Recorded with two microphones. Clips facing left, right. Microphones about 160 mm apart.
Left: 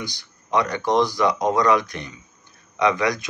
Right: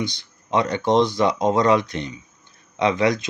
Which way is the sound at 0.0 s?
25° right (ahead or behind).